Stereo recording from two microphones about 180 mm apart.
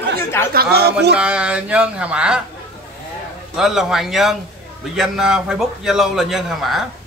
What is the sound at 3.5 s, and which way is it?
A man's voice, centre (ahead or behind).